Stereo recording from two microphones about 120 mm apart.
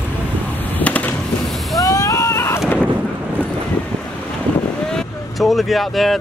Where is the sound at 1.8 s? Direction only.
30° left (ahead or behind).